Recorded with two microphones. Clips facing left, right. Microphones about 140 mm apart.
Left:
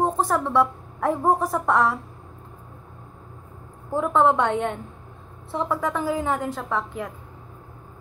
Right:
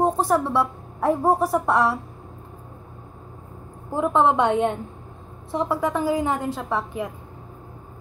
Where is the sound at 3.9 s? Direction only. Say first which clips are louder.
Even; 15° right (ahead or behind).